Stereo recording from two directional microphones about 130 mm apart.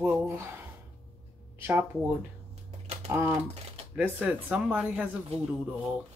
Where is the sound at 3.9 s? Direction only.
15° right (ahead or behind).